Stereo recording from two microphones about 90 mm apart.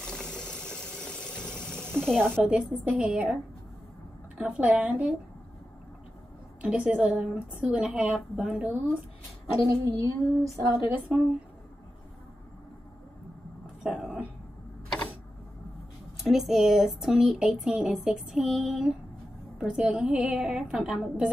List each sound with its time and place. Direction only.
0.0 s engine: 10° left (ahead or behind)
2.4 s a woman's voice: 10° right (ahead or behind)
4.4 s a woman's voice: 15° right (ahead or behind)
6.6 s a woman's voice: 10° right (ahead or behind)
9.7 s a sound: 40° right (ahead or behind)
11.1 s a woman's voice: 10° right (ahead or behind)
13.8 s a sound: 10° right (ahead or behind)
16.2 s a woman's voice: 5° right (ahead or behind)